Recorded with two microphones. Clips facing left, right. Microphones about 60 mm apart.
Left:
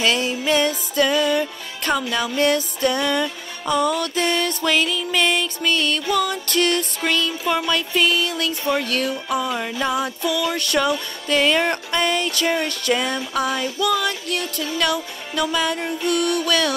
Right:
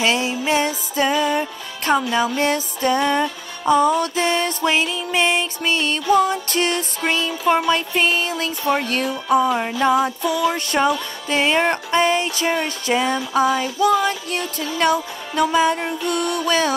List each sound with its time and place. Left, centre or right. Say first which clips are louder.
0.0 s music: right 1 dB; right
10.5 s music: right 2 dB; right
13.7 s music: right 4 dB; right